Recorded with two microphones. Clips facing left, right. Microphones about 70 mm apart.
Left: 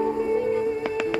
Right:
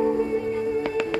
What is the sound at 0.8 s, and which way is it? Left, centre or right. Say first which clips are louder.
Music: even; centre.